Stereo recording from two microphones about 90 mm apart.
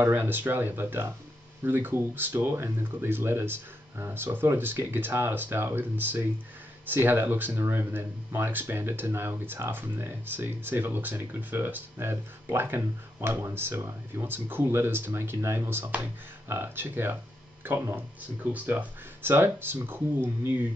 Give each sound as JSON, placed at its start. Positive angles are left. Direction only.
{"t": 0.0, "sound": "speech", "side_deg": -25}
{"t": 18.2, "sound": "speech", "side_deg": -15}